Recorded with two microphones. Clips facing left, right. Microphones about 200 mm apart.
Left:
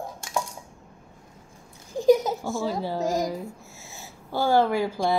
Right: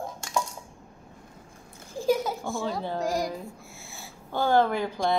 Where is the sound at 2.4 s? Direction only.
5° left (ahead or behind).